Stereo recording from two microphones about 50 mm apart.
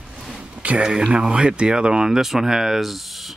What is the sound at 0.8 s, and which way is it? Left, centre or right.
Speech, centre.